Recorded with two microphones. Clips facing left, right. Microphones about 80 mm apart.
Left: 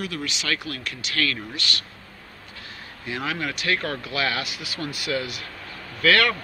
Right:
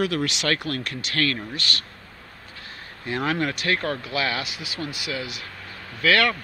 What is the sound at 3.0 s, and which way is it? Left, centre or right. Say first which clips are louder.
Speech: right 4 dB; right.